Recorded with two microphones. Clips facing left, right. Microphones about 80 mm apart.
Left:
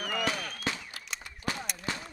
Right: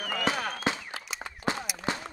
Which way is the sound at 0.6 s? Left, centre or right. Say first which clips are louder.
Right 5 dB; right.